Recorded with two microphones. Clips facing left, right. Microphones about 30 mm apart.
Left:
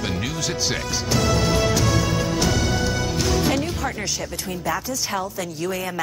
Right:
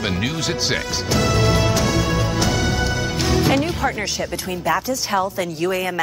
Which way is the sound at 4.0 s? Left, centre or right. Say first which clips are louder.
Right 4 dB; centre.